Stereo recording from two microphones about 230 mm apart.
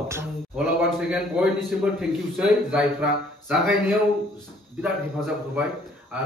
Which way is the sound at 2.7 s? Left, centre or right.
Centre.